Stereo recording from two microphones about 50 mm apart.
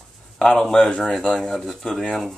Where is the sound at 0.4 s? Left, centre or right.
Centre.